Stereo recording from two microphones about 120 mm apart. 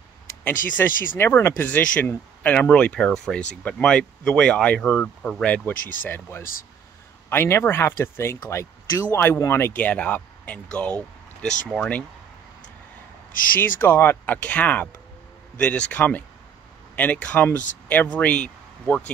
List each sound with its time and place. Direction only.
0.4 s speech: 20° left (ahead or behind)
13.6 s speech: 20° left (ahead or behind)